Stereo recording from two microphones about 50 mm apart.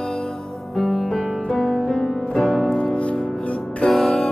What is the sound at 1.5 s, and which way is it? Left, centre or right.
Music, centre.